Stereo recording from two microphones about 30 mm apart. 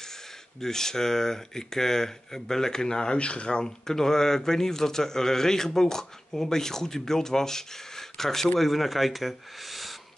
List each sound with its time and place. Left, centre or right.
0.6 s speech: centre
3.2 s speech: left
3.4 s speech: left
8.5 s speech: centre